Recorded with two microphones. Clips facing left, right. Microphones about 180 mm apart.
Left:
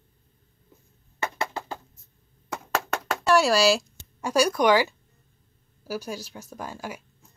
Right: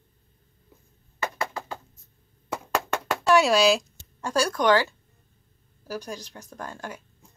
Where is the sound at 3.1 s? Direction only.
Centre (ahead or behind).